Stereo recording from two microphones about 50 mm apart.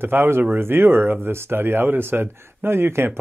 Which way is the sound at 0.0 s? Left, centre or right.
Right.